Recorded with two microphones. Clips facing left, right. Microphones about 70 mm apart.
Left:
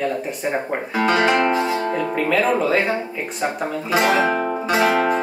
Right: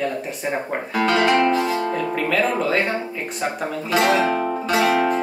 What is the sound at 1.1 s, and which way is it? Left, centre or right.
Music, centre.